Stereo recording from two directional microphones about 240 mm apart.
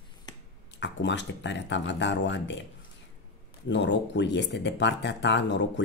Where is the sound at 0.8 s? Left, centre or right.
Left.